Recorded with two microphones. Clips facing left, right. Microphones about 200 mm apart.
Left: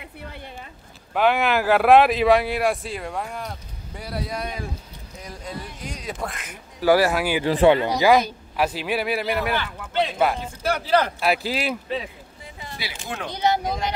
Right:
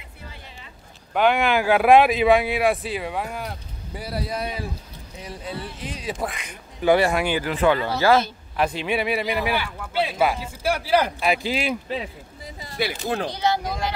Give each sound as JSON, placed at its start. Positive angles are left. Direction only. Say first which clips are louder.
{"t": 1.1, "sound": "speech", "louder": "right 1 dB", "side_deg": 0}
{"t": 7.4, "sound": "a man's voice", "louder": "left 7 dB", "side_deg": 30}
{"t": 9.5, "sound": "speech", "louder": "right 1 dB", "side_deg": -10}
{"t": 11.1, "sound": "speech", "louder": "even", "side_deg": 5}
{"t": 12.9, "sound": "speech", "louder": "right 6 dB", "side_deg": -35}
{"t": 13.3, "sound": "speech", "louder": "left 1 dB", "side_deg": 20}